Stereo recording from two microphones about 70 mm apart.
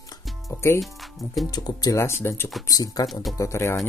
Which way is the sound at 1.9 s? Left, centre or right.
Left.